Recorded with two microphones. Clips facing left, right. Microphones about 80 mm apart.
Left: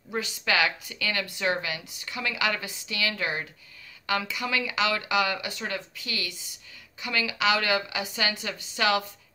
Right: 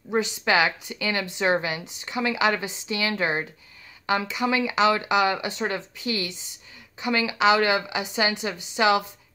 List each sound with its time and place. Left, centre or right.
0.1 s speech: right